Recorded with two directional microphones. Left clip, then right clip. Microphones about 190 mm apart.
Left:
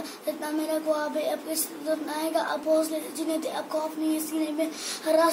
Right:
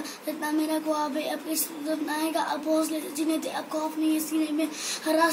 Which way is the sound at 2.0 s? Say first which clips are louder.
Right 2 dB; 20° left (ahead or behind).